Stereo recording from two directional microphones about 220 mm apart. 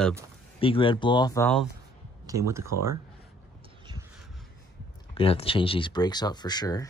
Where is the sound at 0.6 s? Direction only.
25° left (ahead or behind).